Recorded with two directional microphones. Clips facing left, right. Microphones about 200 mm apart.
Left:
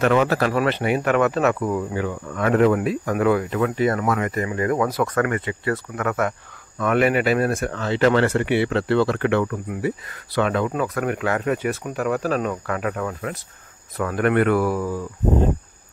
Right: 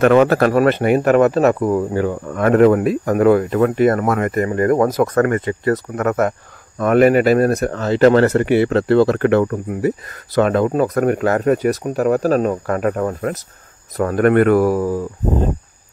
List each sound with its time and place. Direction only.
0.0 s speech: 50° right (ahead or behind)